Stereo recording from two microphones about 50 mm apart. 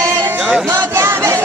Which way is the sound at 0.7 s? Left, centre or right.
Right.